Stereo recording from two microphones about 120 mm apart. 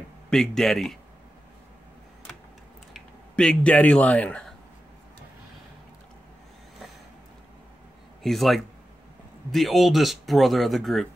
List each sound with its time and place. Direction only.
0.3 s speech: 5° left (ahead or behind)
2.9 s speech: 5° left (ahead or behind)
8.2 s a man's voice: centre (ahead or behind)